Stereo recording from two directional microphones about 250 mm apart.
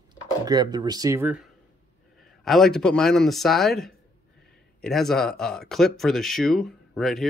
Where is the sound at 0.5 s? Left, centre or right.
Centre.